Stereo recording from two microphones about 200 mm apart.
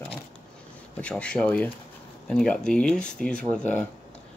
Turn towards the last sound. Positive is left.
turn(degrees=5)  # may be behind; listen again after turning